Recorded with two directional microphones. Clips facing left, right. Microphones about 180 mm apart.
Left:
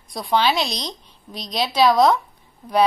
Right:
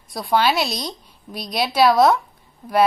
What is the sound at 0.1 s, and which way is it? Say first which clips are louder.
A woman's voice: right 1 dB; 5° right (ahead or behind).